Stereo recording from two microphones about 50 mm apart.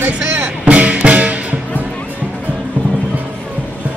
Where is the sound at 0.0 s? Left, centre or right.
Right.